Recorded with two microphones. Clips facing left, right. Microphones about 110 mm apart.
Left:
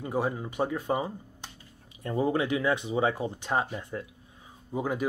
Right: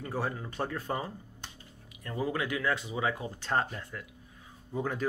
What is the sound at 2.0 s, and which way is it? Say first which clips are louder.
Speech: left 6 dB; 25° left (ahead or behind).